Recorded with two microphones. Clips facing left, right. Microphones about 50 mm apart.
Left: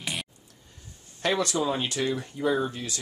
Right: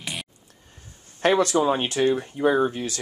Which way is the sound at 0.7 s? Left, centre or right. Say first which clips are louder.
Right 4 dB; right.